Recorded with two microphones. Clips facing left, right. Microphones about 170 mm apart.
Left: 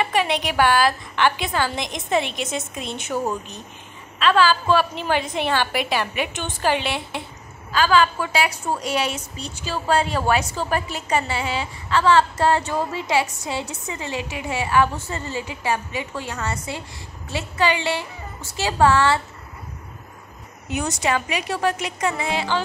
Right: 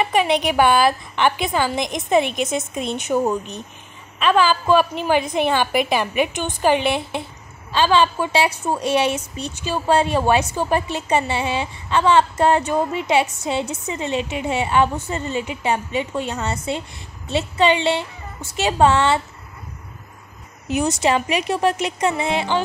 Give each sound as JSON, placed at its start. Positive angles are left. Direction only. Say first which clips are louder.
{"t": 0.0, "sound": "a woman's voice", "louder": "right 4 dB", "side_deg": -15}
{"t": 20.7, "sound": "a woman's voice", "louder": "right 4 dB", "side_deg": -25}